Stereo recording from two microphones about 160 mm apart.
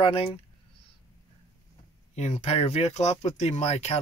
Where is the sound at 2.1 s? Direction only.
40° left (ahead or behind).